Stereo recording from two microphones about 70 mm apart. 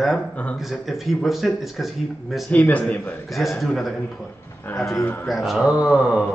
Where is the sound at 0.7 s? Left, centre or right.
Centre.